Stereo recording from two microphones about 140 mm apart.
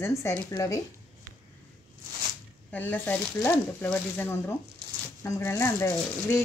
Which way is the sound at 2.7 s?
10° left (ahead or behind).